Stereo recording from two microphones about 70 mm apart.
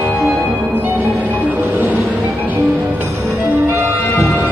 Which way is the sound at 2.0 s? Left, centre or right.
Centre.